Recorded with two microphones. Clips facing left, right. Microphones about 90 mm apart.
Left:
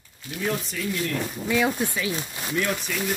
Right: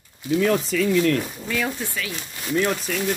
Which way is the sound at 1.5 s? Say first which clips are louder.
Left 4 dB; 15° left (ahead or behind).